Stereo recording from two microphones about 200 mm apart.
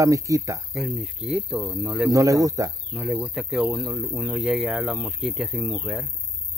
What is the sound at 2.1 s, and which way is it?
Speech, 15° right (ahead or behind).